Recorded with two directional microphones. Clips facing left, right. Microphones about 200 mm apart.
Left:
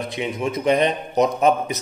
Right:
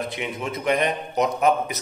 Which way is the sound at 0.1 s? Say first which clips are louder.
Left 5 dB; 15° left (ahead or behind).